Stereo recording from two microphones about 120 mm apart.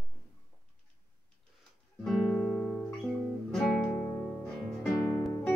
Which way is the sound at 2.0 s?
5° left (ahead or behind).